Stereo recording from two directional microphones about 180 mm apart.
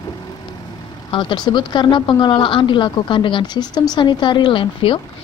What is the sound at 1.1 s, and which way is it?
Speech, 25° left (ahead or behind).